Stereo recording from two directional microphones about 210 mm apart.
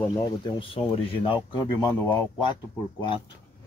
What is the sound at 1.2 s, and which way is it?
Speech, 20° left (ahead or behind).